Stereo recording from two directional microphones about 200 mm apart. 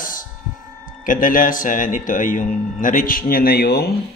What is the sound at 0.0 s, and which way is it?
Music, 45° left (ahead or behind).